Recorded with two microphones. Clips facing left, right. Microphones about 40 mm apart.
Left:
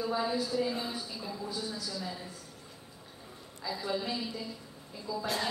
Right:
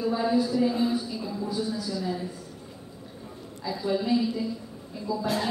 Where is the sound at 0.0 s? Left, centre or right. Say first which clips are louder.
Right 7 dB; centre.